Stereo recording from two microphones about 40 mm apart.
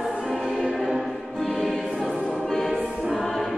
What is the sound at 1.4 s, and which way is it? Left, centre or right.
Choir, centre.